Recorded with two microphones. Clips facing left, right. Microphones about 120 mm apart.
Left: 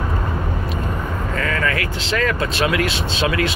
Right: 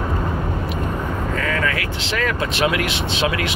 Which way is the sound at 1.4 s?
10° right (ahead or behind).